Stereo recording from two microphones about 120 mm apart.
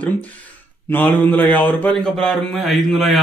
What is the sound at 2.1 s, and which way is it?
A man's voice, 5° left (ahead or behind).